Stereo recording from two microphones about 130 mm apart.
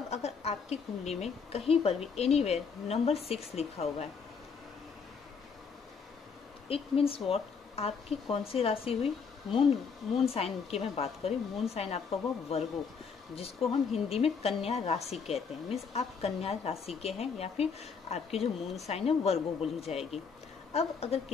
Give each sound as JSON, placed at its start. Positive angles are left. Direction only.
{"t": 0.1, "sound": "speech", "side_deg": 55}
{"t": 6.7, "sound": "speech", "side_deg": 45}